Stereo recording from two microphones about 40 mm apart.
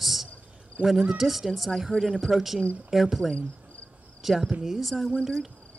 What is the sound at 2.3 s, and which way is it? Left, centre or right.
Speech, centre.